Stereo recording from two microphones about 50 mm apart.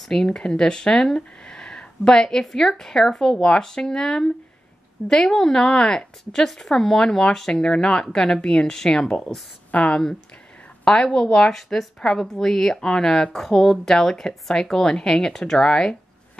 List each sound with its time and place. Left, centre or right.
0.0 s speech: centre